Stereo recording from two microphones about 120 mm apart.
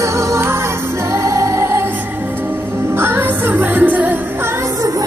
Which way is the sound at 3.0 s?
20° right (ahead or behind).